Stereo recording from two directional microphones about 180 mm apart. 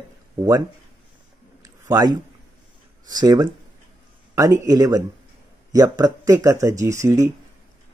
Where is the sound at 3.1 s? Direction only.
20° right (ahead or behind).